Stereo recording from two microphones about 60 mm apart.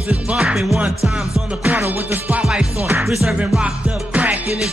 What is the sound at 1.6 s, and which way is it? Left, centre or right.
Music, right.